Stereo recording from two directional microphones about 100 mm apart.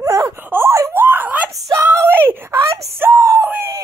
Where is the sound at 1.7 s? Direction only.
25° right (ahead or behind).